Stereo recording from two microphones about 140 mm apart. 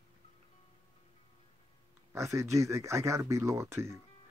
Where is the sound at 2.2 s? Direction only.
20° right (ahead or behind).